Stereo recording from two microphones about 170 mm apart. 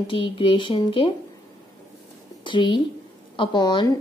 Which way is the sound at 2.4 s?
30° left (ahead or behind).